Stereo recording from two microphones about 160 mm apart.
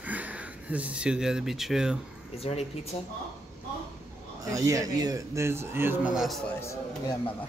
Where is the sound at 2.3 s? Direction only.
40° left (ahead or behind).